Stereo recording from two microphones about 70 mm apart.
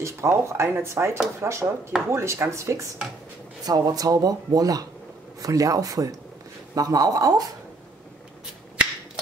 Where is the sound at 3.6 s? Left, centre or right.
Right.